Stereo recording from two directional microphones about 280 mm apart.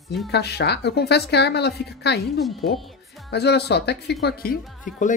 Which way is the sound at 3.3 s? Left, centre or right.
Left.